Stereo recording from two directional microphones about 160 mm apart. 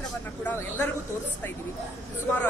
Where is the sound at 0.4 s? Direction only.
10° left (ahead or behind).